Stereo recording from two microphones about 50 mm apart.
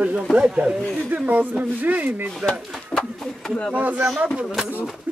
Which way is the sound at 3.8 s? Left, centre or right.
Right.